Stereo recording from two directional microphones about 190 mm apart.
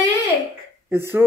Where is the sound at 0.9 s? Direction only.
10° right (ahead or behind).